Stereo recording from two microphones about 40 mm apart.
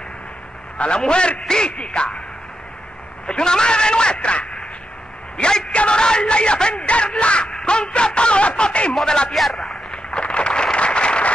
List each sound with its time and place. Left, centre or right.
0.7 s speech: left
3.3 s speech: left
5.7 s speech: left
9.3 s a man's voice: centre
9.8 s a sound: left